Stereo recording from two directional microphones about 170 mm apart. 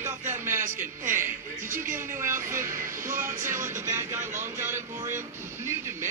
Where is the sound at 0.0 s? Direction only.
15° right (ahead or behind).